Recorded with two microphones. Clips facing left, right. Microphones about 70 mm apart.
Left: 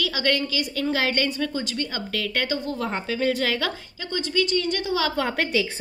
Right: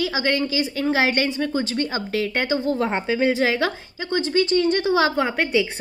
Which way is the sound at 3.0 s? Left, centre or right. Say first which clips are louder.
Right 3 dB; right.